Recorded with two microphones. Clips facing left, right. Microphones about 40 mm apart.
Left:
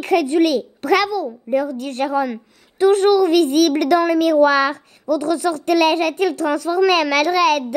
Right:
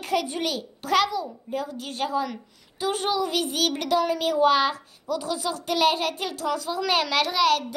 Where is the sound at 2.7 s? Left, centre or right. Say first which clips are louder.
Left 12 dB; left.